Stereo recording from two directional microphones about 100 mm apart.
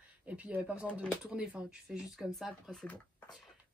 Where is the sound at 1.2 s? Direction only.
10° right (ahead or behind); by 3.0 s 10° left (ahead or behind).